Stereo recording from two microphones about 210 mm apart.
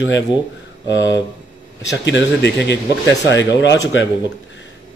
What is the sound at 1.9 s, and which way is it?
Speech, 60° left (ahead or behind).